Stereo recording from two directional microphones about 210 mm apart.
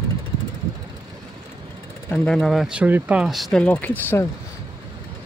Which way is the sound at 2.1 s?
5° left (ahead or behind).